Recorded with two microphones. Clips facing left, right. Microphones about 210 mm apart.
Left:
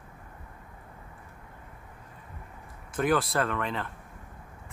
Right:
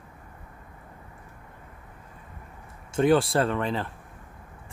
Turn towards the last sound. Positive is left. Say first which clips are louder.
# right 4 dB
turn(degrees=-30)  # may be behind; listen again after turning